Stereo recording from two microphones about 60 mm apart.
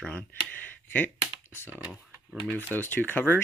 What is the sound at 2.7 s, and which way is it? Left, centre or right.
Speech, left.